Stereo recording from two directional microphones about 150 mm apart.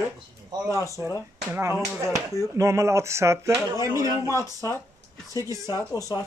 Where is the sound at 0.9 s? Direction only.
20° left (ahead or behind).